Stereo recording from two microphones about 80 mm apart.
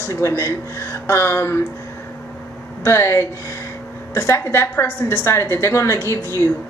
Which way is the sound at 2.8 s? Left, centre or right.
Left.